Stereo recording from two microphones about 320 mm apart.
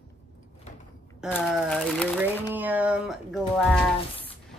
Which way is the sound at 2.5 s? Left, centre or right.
Centre.